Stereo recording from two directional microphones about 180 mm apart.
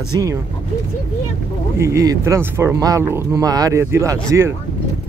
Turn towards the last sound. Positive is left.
turn(degrees=-15)  # may be behind; listen again after turning